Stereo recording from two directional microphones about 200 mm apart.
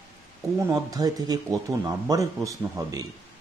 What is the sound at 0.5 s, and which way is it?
Speech, 15° right (ahead or behind).